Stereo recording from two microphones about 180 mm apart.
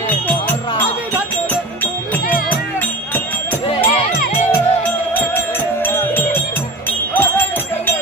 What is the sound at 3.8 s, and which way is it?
Music, 40° left (ahead or behind).